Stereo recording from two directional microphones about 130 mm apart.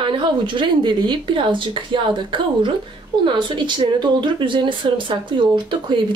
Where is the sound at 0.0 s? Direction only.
40° right (ahead or behind).